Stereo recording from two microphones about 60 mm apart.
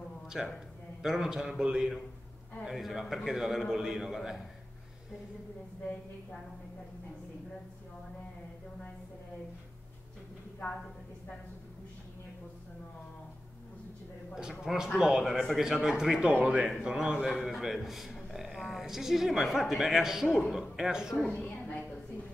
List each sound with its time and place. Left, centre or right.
0.3 s a man's voice: centre
14.6 s a man's voice: centre
15.2 s a man's voice: centre
21.5 s a sound: left